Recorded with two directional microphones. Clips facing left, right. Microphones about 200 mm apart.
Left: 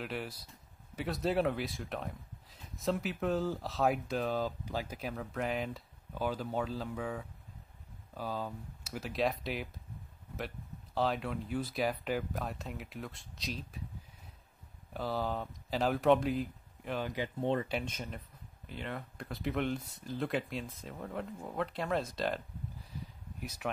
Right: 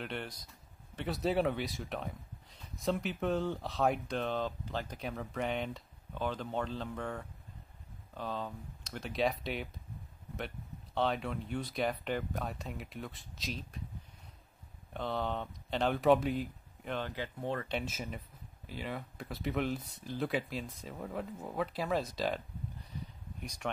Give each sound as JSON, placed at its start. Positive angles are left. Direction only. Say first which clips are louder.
{"t": 0.0, "sound": "speech", "louder": "left 1 dB", "side_deg": 5}
{"t": 11.0, "sound": "speech", "louder": "even", "side_deg": 0}
{"t": 15.0, "sound": "speech", "louder": "left 1 dB", "side_deg": 5}
{"t": 17.6, "sound": "speech", "louder": "even", "side_deg": 0}
{"t": 22.8, "sound": "a sound", "louder": "right 1 dB", "side_deg": 5}